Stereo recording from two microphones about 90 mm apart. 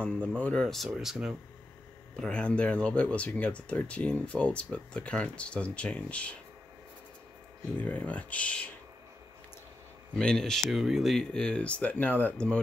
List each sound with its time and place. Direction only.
0.4 s speech: 10° left (ahead or behind); by 1.3 s 5° right (ahead or behind)
2.1 s speech: 10° left (ahead or behind)
7.8 s speech: 15° left (ahead or behind)
10.1 s speech: 5° left (ahead or behind)